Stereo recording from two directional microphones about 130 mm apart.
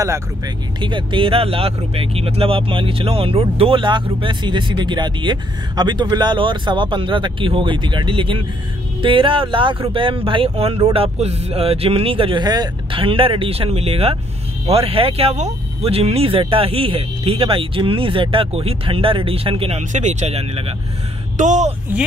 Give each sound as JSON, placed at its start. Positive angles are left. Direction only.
{"t": 0.7, "sound": "speech", "side_deg": -40}
{"t": 13.0, "sound": "speech", "side_deg": -45}
{"t": 19.8, "sound": "speech", "side_deg": -65}
{"t": 21.4, "sound": "speech", "side_deg": -65}